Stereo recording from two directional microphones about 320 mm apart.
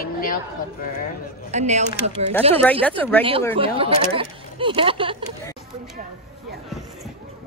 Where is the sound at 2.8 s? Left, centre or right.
Centre.